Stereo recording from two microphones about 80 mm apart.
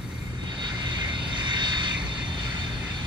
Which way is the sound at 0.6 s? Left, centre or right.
Right.